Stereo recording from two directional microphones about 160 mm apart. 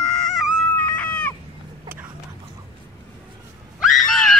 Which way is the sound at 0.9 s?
10° left (ahead or behind).